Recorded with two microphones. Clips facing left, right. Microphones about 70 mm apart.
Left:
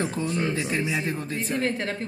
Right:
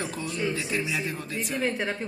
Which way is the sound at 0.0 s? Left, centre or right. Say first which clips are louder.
Left 4 dB; left.